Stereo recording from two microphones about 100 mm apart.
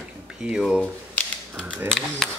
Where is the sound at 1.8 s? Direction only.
5° left (ahead or behind).